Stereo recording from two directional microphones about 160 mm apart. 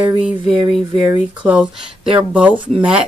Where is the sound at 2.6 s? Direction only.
30° right (ahead or behind).